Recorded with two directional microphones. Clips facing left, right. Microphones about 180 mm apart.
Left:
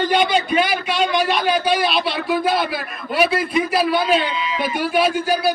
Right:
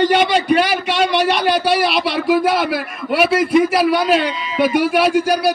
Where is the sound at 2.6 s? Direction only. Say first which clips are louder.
Right 4 dB; 70° right (ahead or behind).